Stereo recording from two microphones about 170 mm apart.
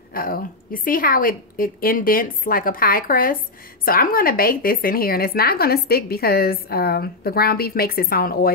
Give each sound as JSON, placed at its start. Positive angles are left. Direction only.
{"t": 0.1, "sound": "speech", "side_deg": 55}